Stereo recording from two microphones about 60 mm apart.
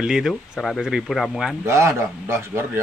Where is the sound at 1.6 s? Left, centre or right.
Right.